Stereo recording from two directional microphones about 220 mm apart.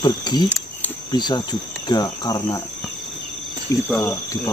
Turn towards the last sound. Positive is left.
turn(degrees=10)  # may be behind; listen again after turning